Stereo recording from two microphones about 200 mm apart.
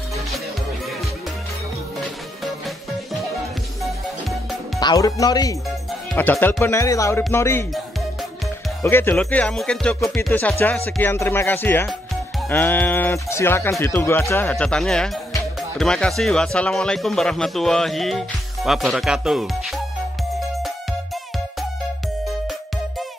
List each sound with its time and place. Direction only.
2.0 s music: centre (ahead or behind)
4.7 s speech: 20° left (ahead or behind)
8.8 s speech: 10° left (ahead or behind)
20.3 s music: centre (ahead or behind)